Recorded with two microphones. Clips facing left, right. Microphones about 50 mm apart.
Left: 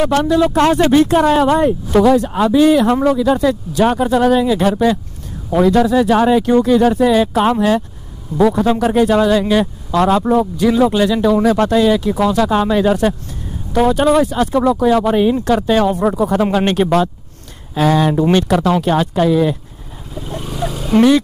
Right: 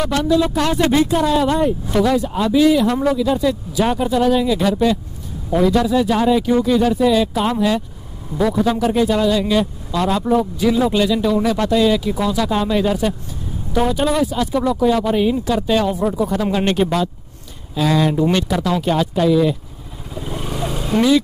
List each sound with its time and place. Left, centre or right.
0.1 s speech: left
20.2 s vehicle: centre